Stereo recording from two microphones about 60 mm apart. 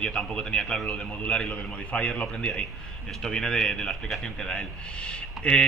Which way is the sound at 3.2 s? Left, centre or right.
Centre.